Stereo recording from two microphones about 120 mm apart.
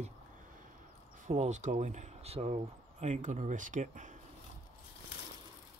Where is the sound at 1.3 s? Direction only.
80° right; by 2.6 s 60° right (ahead or behind).